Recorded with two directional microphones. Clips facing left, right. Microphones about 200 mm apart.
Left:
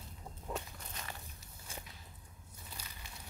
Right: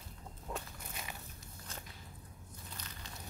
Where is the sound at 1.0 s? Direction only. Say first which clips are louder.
Even; 10° right (ahead or behind).